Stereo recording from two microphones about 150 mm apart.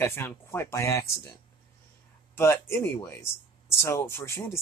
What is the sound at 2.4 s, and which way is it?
Speech, 20° left (ahead or behind).